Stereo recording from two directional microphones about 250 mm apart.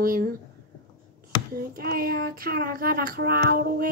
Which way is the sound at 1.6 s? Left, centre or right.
Right.